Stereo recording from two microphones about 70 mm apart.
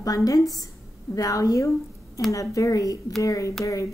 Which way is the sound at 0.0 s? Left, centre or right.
Left.